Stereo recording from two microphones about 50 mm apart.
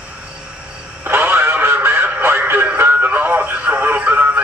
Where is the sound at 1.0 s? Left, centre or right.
Right.